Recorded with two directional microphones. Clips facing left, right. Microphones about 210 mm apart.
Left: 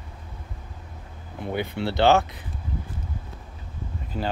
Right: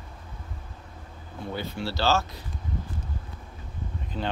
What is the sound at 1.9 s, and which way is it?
Speech, 60° left (ahead or behind).